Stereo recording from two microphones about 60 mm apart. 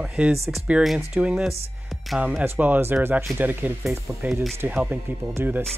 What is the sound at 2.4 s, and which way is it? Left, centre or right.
Speech, right.